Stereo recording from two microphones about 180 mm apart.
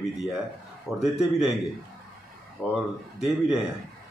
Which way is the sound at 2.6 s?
10° left (ahead or behind).